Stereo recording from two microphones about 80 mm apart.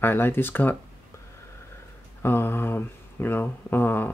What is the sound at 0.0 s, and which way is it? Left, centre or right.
Mantra, left.